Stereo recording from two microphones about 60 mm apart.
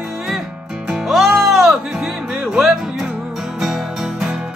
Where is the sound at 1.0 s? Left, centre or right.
Centre.